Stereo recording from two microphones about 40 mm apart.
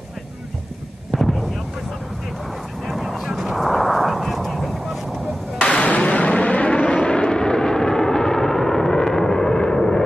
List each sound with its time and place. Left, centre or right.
1.1 s artillery fire: centre
2.9 s vehicle: centre
3.2 s a sound: centre
5.6 s artillery fire: left
6.9 s vehicle: left